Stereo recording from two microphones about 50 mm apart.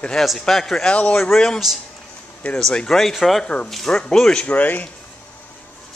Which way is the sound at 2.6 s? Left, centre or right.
Centre.